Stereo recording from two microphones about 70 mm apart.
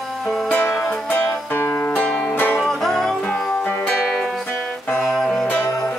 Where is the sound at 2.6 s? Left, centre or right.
Centre.